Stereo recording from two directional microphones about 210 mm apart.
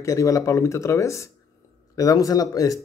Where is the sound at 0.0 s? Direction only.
15° left (ahead or behind).